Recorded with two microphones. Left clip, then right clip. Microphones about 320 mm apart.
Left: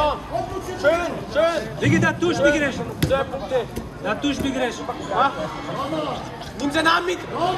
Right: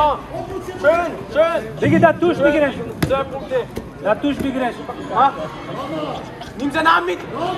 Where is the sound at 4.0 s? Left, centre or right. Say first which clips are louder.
Right 5 dB; centre.